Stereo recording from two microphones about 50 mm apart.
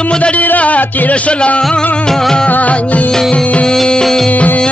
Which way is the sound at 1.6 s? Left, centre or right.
Centre.